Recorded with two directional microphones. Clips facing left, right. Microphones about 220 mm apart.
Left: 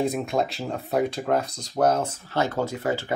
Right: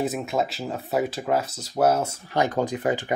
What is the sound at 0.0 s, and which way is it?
Speech, 5° right (ahead or behind).